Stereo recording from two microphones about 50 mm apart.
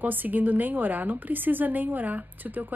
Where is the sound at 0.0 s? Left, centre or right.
Right.